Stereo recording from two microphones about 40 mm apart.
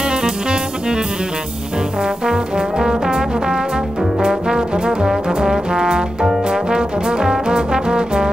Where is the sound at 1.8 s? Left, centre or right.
Centre.